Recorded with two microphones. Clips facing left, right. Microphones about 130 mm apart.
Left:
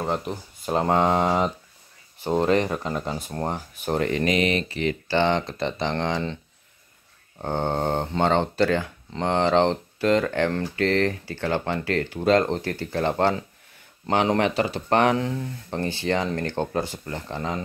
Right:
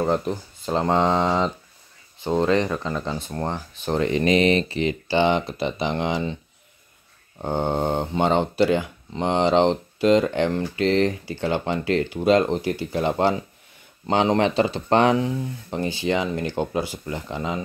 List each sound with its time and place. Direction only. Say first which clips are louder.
0.0 s speech: right 5 dB; centre (ahead or behind)
2.6 s speech: right 1 dB; 15° left (ahead or behind)
4.0 s speech: right 4 dB; 25° right (ahead or behind)
5.0 s speech: right 2 dB; 15° right (ahead or behind)
7.4 s speech: right 2 dB; 15° right (ahead or behind)